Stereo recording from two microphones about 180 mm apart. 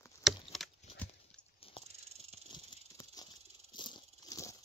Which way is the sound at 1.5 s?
30° left (ahead or behind).